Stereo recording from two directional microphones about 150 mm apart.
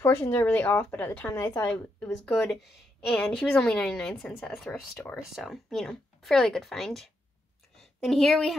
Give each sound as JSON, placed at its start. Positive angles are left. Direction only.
{"t": 0.0, "sound": "speech", "side_deg": 15}